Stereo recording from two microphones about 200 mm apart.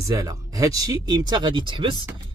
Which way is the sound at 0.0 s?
15° right (ahead or behind).